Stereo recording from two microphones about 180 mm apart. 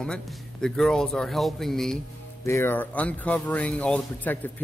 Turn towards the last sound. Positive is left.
turn(degrees=10)  # may be behind; listen again after turning